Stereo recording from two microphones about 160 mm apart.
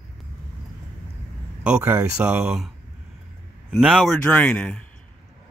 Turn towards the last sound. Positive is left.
turn(degrees=10)  # may be behind; listen again after turning